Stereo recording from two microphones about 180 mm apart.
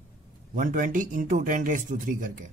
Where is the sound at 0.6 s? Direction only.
45° right (ahead or behind).